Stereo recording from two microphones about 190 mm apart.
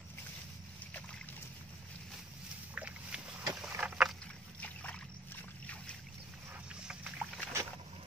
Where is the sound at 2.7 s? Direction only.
5° right (ahead or behind).